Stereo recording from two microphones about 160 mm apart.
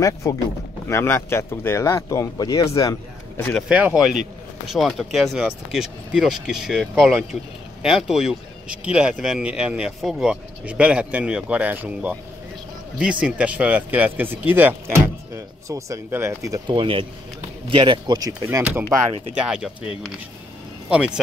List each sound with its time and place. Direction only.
0.0 s speech: 20° left (ahead or behind)
3.3 s speech: 10° left (ahead or behind)
3.6 s speech: 10° right (ahead or behind)
16.7 s a man's voice: 35° right (ahead or behind)
18.5 s speech: 10° right (ahead or behind)